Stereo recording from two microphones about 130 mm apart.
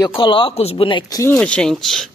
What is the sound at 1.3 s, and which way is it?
Speech, 10° left (ahead or behind).